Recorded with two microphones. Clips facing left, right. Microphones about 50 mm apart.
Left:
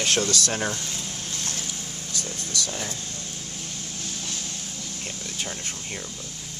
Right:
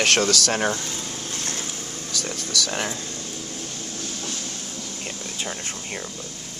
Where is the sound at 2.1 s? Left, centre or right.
Right.